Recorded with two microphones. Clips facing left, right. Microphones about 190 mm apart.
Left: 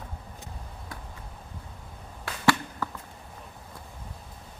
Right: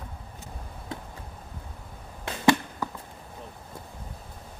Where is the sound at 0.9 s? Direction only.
25° right (ahead or behind).